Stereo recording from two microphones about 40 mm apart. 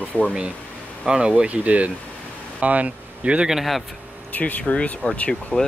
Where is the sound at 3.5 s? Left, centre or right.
Centre.